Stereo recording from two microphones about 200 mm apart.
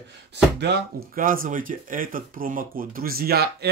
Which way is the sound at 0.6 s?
55° right (ahead or behind).